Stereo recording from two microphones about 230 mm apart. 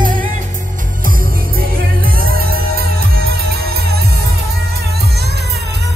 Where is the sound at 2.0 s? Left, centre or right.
Right.